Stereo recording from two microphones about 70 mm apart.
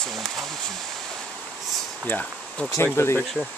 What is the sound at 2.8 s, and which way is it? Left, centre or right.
Speech, left.